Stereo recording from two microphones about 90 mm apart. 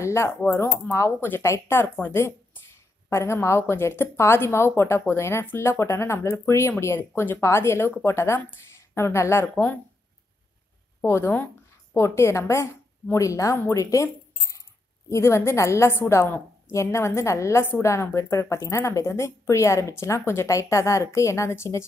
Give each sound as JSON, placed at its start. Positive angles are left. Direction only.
{"t": 0.0, "sound": "a woman's voice", "side_deg": 30}
{"t": 11.0, "sound": "a woman's voice", "side_deg": 25}